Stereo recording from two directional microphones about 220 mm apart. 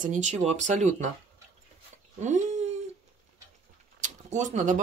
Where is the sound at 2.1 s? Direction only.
35° right (ahead or behind).